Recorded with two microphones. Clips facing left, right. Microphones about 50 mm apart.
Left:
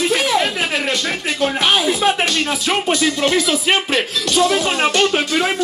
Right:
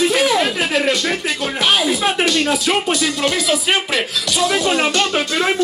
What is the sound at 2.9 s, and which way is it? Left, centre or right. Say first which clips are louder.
Speech: left 2 dB; left.